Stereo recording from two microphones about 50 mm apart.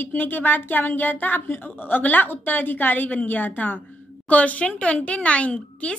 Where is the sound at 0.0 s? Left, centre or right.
Left.